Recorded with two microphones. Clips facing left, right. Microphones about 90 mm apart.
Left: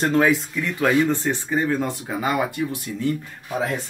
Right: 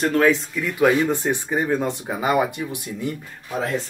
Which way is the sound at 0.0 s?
20° left (ahead or behind).